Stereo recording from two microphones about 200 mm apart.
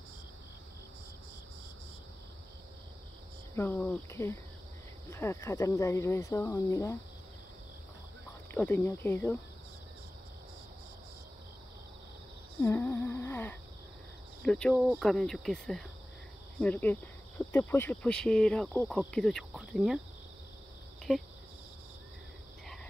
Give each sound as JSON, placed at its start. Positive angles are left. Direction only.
{"t": 3.5, "sound": "speech", "side_deg": 10}
{"t": 8.5, "sound": "speech", "side_deg": 10}
{"t": 12.6, "sound": "humming", "side_deg": 10}
{"t": 14.4, "sound": "speech", "side_deg": 0}
{"t": 21.1, "sound": "speech", "side_deg": 0}